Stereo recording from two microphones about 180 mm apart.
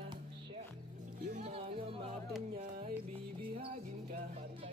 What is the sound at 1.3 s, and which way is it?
Music, 35° right (ahead or behind).